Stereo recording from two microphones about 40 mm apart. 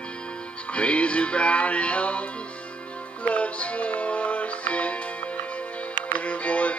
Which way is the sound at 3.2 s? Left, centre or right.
Left.